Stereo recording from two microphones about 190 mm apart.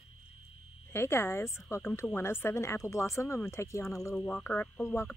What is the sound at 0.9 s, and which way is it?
Speech, 15° left (ahead or behind).